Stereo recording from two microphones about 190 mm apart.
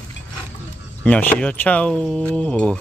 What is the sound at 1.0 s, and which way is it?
Speech, 10° left (ahead or behind).